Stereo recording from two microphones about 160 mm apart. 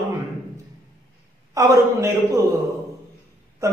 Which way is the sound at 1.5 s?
20° right (ahead or behind).